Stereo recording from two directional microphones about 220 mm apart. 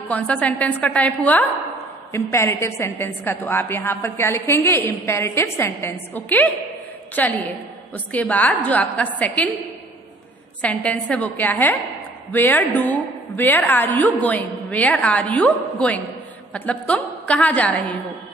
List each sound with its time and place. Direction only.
0.1 s a woman's voice: 5° left (ahead or behind)
10.6 s a woman's voice: 5° left (ahead or behind)